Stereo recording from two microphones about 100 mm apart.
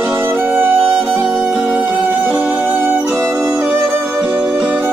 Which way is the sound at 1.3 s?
5° right (ahead or behind).